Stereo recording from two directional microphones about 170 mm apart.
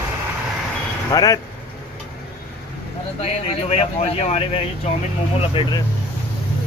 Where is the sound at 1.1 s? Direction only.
25° left (ahead or behind).